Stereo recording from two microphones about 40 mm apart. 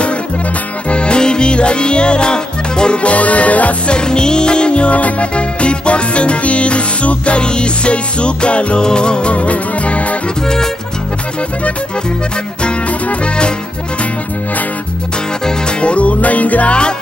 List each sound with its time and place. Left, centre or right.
0.8 s music: left
3.9 s music: left
9.3 s music: left
10.4 s music: centre
15.8 s music: left